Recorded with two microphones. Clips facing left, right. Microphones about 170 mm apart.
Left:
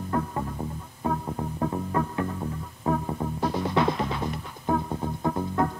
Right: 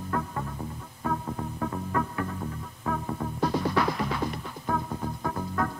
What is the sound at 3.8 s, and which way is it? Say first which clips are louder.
Music: left 5 dB; 25° left (ahead or behind).